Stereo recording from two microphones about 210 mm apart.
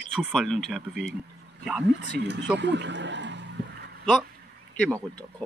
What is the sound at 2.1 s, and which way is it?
Speech, 55° right (ahead or behind).